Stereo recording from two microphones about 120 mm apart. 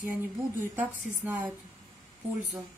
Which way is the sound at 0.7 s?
15° right (ahead or behind).